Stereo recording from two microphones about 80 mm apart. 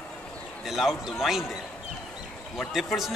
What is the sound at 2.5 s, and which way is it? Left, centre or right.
Speech, centre.